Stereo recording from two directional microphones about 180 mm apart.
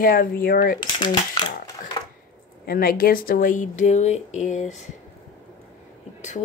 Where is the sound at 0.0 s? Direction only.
50° left (ahead or behind).